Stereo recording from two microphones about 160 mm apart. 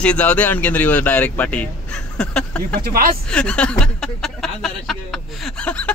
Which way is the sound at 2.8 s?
65° right (ahead or behind).